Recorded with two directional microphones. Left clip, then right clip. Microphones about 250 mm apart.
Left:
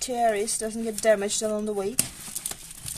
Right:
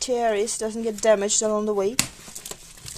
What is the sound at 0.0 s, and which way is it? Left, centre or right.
A woman's voice, centre.